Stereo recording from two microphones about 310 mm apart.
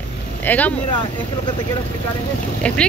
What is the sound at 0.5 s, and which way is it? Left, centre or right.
Speech, centre.